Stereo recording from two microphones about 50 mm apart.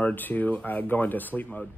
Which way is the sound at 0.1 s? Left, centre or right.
Left.